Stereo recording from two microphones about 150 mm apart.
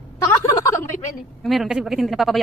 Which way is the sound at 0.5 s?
20° left (ahead or behind).